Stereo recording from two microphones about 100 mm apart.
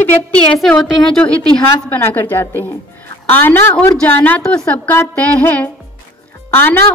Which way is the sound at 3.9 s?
15° left (ahead or behind).